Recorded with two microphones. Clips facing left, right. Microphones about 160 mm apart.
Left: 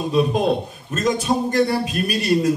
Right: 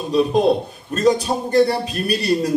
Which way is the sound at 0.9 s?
35° right (ahead or behind).